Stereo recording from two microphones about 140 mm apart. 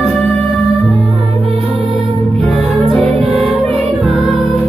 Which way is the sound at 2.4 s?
Centre (ahead or behind).